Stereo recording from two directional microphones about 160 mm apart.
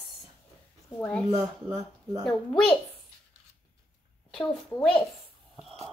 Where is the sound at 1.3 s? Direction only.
25° right (ahead or behind).